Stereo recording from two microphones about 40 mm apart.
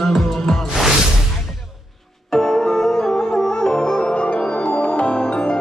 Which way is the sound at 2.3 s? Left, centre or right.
Centre.